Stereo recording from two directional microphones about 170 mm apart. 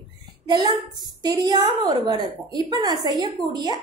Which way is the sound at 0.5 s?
25° right (ahead or behind).